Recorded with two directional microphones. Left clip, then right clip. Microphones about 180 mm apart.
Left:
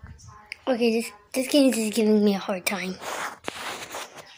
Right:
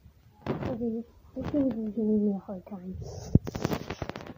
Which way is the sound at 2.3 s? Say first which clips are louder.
Left 13 dB; 70° left (ahead or behind).